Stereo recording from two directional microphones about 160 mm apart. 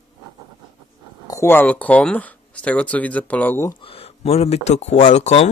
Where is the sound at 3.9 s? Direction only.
40° left (ahead or behind).